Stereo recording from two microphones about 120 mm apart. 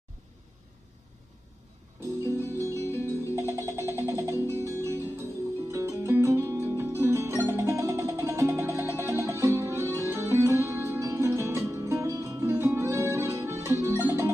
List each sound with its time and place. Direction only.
2.2 s music: 25° left (ahead or behind)
3.5 s music: 25° right (ahead or behind)